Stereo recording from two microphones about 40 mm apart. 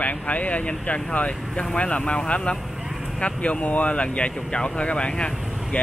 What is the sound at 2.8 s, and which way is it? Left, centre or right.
Vehicle, centre.